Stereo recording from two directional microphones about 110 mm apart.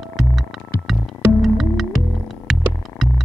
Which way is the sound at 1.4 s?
Centre (ahead or behind).